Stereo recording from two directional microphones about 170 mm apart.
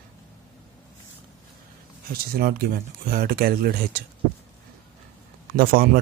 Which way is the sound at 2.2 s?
60° right (ahead or behind).